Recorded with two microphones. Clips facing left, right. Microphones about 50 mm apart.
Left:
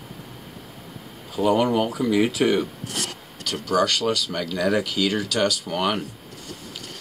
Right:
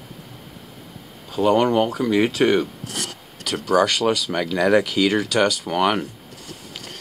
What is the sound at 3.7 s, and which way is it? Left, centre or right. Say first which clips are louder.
Speech: right 3 dB; centre.